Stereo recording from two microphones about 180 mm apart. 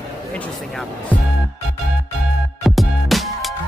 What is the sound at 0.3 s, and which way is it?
Speech, 5° left (ahead or behind).